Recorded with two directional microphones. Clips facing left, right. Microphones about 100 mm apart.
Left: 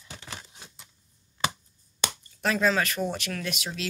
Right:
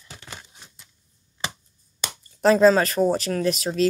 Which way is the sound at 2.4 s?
35° right (ahead or behind).